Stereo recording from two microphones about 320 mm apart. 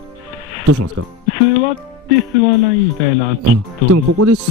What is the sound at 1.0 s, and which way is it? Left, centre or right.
Speech, right.